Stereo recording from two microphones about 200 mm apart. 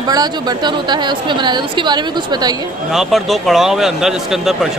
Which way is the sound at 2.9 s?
Centre (ahead or behind).